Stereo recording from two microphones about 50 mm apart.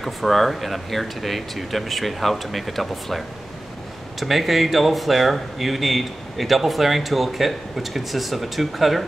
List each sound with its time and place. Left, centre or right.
0.0 s speech: centre